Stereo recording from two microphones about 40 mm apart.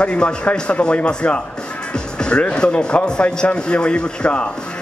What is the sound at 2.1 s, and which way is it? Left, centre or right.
Music, left.